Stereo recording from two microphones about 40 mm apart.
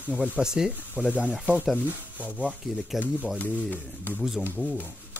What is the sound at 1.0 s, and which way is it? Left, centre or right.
Speech, right.